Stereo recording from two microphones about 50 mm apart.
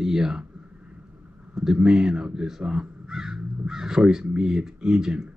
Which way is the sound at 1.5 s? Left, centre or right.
Centre.